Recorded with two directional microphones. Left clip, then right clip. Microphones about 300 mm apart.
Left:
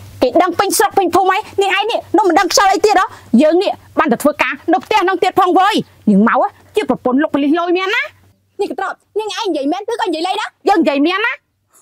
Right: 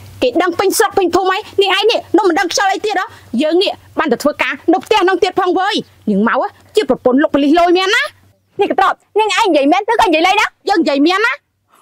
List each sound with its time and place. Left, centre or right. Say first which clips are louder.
0.4 s a woman's voice: even; left
1.3 s a woman's voice: right 1 dB; left
2.3 s a woman's voice: left 3 dB; left
3.4 s a woman's voice: right 1 dB; left
4.8 s speech: right 2 dB; centre
5.3 s a woman's voice: left 3 dB; left
5.7 s speech: left 2 dB; left
7.0 s speech: right 3 dB; centre
8.5 s a woman's voice: right 7 dB; right
10.8 s speech: even; left
11.1 s speech: right 3 dB; centre